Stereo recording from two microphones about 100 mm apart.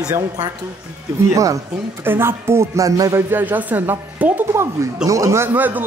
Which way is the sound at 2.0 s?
25° right (ahead or behind).